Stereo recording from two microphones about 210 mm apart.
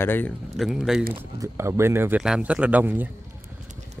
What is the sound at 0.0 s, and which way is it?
Speech, 10° left (ahead or behind).